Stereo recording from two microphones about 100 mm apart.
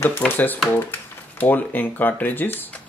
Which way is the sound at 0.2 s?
15° left (ahead or behind).